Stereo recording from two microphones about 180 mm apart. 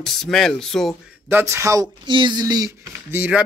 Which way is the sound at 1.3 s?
15° right (ahead or behind).